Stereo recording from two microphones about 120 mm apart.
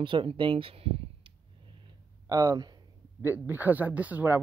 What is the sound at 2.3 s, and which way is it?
Speech, 30° right (ahead or behind).